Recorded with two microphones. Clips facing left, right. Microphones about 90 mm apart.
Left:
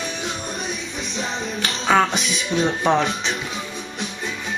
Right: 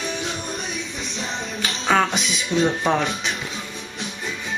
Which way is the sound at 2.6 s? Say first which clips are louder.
Left 3 dB; 15° left (ahead or behind).